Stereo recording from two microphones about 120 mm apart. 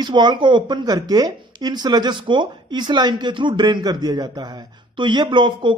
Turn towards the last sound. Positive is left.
turn(degrees=-40)  # may be behind; listen again after turning